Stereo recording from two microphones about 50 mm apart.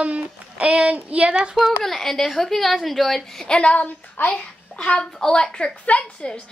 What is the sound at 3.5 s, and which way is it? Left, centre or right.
Speech, left.